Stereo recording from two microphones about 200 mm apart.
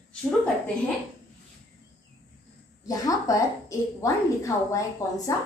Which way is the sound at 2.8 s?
20° left (ahead or behind).